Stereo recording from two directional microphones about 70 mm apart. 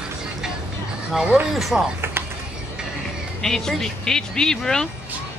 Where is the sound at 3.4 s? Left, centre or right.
Centre.